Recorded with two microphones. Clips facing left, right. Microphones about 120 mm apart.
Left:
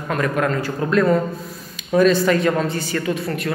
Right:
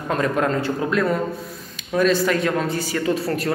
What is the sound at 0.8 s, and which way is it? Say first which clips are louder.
A man's voice: left 7 dB; 5° right (ahead or behind).